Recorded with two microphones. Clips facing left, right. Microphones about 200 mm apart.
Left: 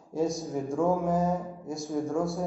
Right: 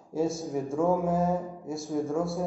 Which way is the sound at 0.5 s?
Centre (ahead or behind).